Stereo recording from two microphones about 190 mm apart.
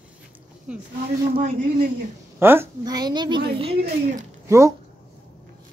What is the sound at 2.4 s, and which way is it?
A woman's voice, 10° right (ahead or behind).